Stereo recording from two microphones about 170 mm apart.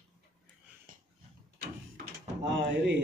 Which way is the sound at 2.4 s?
90° right.